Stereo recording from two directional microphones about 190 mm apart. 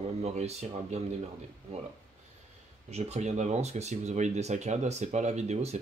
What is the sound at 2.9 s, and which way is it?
Speech, 35° right (ahead or behind).